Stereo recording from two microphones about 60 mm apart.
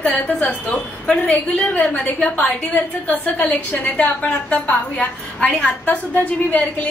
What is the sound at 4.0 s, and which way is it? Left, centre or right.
A woman's voice, left.